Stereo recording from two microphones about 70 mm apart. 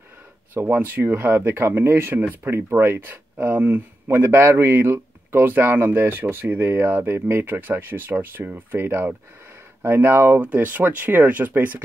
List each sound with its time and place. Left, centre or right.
0.6 s speech: right
10.4 s speech: right